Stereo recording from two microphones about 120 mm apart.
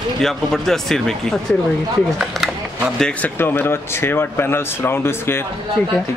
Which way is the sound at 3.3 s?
15° left (ahead or behind).